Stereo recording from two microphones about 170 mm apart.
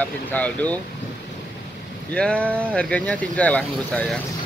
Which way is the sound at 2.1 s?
5° left (ahead or behind).